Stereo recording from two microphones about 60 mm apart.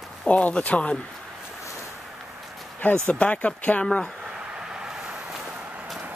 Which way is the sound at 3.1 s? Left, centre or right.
Centre.